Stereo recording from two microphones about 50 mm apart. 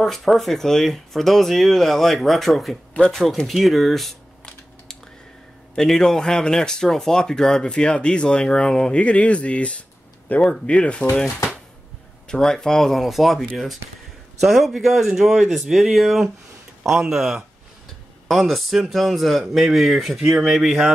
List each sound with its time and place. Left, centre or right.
0.0 s speech: centre
5.8 s speech: centre
7.6 s speech: centre
12.3 s speech: centre